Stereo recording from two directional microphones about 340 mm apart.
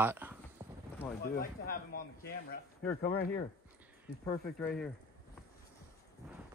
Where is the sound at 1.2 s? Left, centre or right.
Left.